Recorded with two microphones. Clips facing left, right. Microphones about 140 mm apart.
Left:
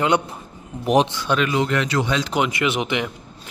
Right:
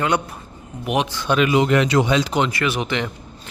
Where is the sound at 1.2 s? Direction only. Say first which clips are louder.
Right 3 dB; 10° right (ahead or behind).